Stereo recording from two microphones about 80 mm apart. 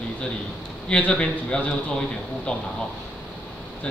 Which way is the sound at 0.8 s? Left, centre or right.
Centre.